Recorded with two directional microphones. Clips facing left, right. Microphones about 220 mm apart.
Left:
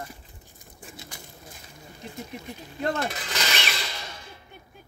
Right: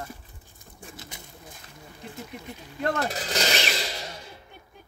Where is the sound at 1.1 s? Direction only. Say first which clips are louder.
Even; 20° right (ahead or behind).